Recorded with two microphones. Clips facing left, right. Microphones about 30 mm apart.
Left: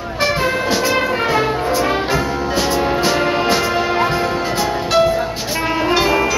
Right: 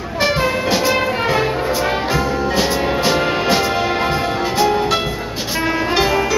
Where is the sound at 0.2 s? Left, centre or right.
Centre.